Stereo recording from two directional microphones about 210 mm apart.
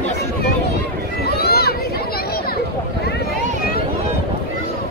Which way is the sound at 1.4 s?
50° left (ahead or behind).